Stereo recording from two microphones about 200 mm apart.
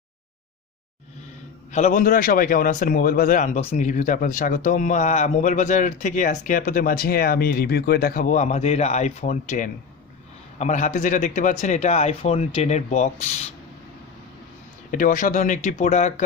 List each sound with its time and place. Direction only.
1.7 s a man's voice: 40° left (ahead or behind)
14.9 s a man's voice: 40° left (ahead or behind)